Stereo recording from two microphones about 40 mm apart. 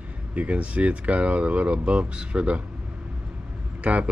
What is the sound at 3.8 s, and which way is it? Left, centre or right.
Speech, right.